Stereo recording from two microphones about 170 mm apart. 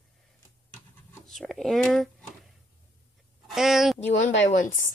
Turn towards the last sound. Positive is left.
turn(degrees=45)  # may be behind; listen again after turning